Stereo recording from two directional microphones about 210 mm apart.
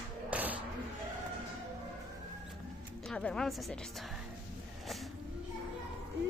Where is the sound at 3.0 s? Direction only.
5° left (ahead or behind).